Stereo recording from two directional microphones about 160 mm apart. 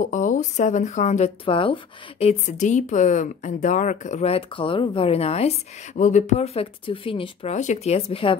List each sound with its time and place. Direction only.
0.0 s speech: 50° left (ahead or behind); by 7.5 s 35° left (ahead or behind)
7.5 s speech: 45° left (ahead or behind)